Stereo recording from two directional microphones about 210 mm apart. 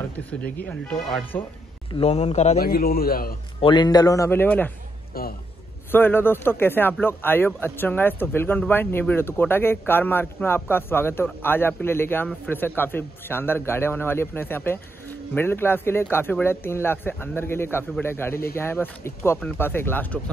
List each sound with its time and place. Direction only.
0.3 s speech: 5° left (ahead or behind)
2.0 s speech: 30° left (ahead or behind)
2.6 s a man's voice: 45° left (ahead or behind)
3.6 s speech: 20° left (ahead or behind)
5.1 s a man's voice: 45° left (ahead or behind)
5.9 s speech: 10° left (ahead or behind)